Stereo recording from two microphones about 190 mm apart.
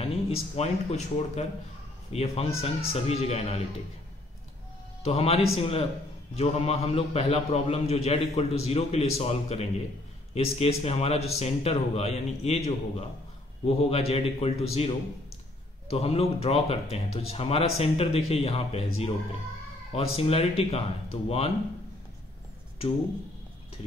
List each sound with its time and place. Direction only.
0.0 s a man's voice: 30° left (ahead or behind)
5.0 s a man's voice: 30° left (ahead or behind)
19.9 s a man's voice: 30° left (ahead or behind)